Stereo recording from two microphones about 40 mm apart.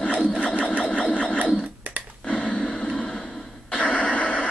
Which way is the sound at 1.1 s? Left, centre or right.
Left.